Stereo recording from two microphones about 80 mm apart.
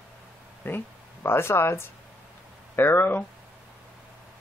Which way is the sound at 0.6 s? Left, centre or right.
Left.